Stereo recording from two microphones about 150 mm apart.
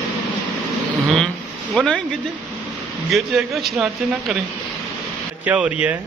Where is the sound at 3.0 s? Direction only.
Centre (ahead or behind).